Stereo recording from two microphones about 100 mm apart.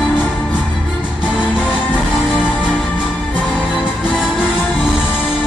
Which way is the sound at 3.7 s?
10° right (ahead or behind).